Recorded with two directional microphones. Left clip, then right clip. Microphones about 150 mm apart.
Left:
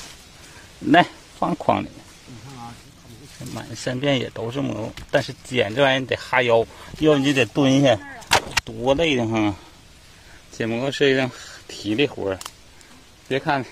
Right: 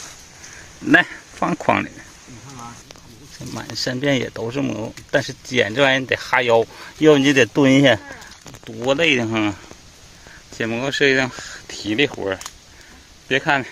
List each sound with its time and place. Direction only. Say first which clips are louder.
0.8 s speech: right 1 dB; centre (ahead or behind)
3.4 s speech: right 4 dB; 15° right (ahead or behind)
6.8 s speech: right 5 dB; 25° right (ahead or behind)
8.6 s speech: right 2 dB; 5° left (ahead or behind)
10.6 s speech: right 2 dB; centre (ahead or behind)